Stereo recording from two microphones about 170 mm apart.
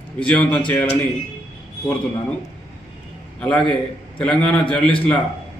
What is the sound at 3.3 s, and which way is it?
A man's voice, 10° left (ahead or behind).